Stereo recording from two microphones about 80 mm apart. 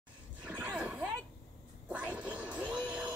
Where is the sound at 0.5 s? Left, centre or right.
Centre.